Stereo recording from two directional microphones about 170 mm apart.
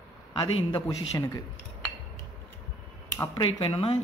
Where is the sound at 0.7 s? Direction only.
20° left (ahead or behind).